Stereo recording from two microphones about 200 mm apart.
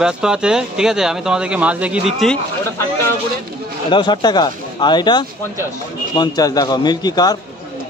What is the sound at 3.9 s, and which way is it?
Speech, 20° left (ahead or behind).